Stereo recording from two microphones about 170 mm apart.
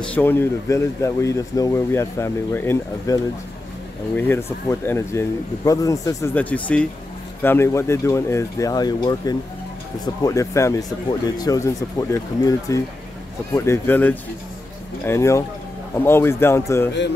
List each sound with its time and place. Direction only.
0.0 s speech: 10° left (ahead or behind)
4.2 s speech: 15° left (ahead or behind)
6.3 s speech: 10° left (ahead or behind)